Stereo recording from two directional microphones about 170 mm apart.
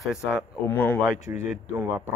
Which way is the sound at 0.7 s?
10° left (ahead or behind).